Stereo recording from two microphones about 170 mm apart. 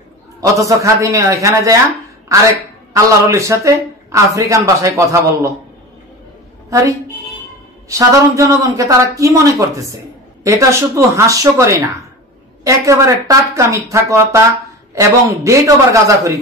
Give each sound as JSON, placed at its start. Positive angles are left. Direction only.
{"t": 0.4, "sound": "speech", "side_deg": -20}
{"t": 2.9, "sound": "speech", "side_deg": -20}
{"t": 6.7, "sound": "a woman's voice", "side_deg": -20}